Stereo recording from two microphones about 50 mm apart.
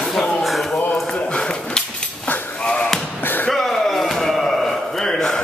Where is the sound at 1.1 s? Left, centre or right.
Centre.